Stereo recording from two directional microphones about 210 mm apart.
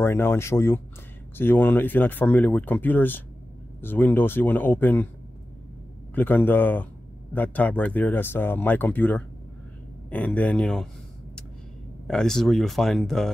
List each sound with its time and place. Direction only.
0.0 s speech: 10° left (ahead or behind)
6.1 s speech: 10° left (ahead or behind)
12.1 s speech: centre (ahead or behind)